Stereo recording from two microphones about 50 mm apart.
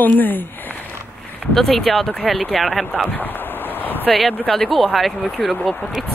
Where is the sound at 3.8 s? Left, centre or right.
Left.